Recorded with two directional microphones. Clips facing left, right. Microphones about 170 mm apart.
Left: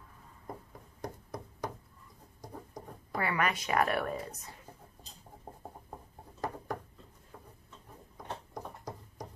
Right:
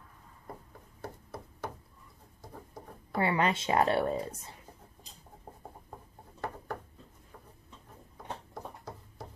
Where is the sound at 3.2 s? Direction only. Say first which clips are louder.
Right 4 dB; 25° right (ahead or behind).